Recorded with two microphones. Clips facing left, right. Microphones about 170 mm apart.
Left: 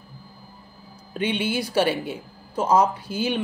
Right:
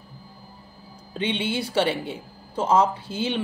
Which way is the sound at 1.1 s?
25° right (ahead or behind).